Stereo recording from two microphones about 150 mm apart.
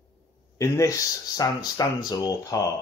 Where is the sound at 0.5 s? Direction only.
20° left (ahead or behind).